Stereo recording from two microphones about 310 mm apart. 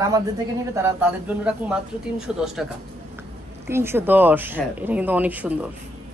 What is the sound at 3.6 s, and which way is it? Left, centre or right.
A woman's voice, centre.